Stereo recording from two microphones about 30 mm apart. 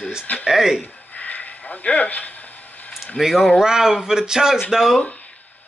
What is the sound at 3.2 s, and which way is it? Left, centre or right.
Speech, centre.